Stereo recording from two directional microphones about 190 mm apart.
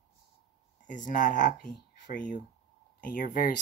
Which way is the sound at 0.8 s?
40° left (ahead or behind).